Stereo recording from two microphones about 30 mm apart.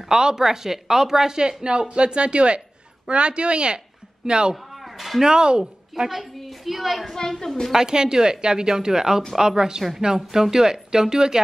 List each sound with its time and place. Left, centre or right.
0.0 s speech: right
4.7 s a sound: centre
5.2 s speech: right
6.4 s a woman's voice: centre
7.2 s a woman's voice: centre
7.7 s speech: right
8.6 s speech: centre